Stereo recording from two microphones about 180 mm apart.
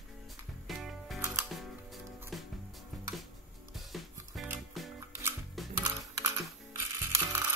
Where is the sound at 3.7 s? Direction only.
Centre (ahead or behind).